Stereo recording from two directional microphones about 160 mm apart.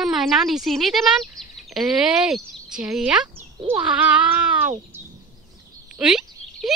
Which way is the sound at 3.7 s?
10° right (ahead or behind).